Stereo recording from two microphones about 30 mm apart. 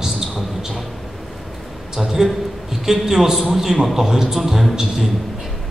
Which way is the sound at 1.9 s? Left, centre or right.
Centre.